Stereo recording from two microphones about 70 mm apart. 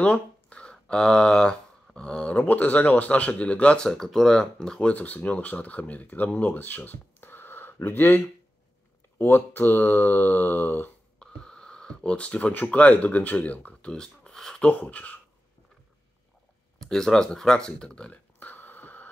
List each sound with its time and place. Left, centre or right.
0.0 s speech: centre
9.2 s speech: left
11.1 s speech: centre
16.8 s a sound: centre; by 19.0 s left